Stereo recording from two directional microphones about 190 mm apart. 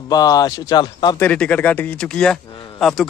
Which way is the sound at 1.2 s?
5° left (ahead or behind).